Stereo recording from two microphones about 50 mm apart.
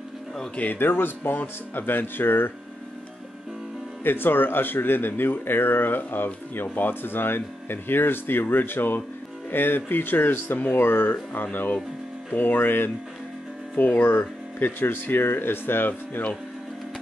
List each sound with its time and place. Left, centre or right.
0.7 s speech: left
4.0 s speech: left